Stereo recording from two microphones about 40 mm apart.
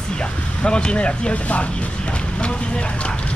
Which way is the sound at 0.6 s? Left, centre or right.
Left.